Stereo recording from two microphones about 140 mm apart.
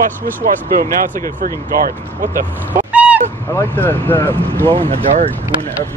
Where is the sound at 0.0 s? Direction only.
85° right.